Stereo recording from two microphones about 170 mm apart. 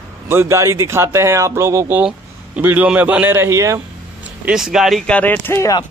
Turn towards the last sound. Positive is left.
turn(degrees=20)  # may be behind; listen again after turning